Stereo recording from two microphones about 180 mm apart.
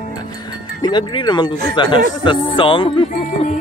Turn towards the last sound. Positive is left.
turn(degrees=30)  # may be behind; listen again after turning